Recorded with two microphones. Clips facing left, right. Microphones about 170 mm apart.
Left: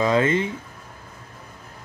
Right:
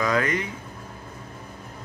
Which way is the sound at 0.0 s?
25° left (ahead or behind).